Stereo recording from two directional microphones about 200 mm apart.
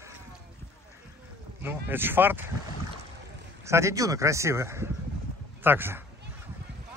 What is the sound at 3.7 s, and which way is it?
Speech, 15° right (ahead or behind).